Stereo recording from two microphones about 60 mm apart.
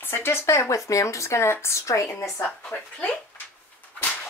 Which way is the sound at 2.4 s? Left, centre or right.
Centre.